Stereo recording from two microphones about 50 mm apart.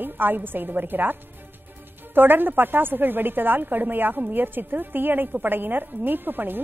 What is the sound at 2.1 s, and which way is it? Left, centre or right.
A woman's voice, right.